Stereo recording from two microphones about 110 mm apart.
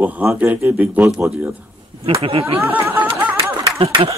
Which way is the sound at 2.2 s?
60° right (ahead or behind).